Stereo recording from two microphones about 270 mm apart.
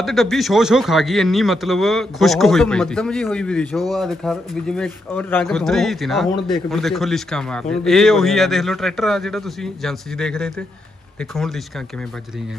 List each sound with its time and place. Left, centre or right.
0.0 s a man's voice: centre